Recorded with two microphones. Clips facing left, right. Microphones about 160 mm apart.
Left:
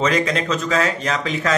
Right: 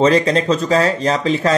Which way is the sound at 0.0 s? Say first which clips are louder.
Right 6 dB; 30° right (ahead or behind).